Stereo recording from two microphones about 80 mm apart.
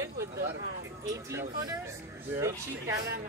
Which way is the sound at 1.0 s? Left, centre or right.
Right.